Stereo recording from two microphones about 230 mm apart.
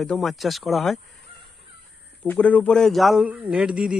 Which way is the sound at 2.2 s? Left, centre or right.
Centre.